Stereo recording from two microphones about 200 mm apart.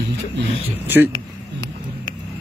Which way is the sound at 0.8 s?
10° right (ahead or behind).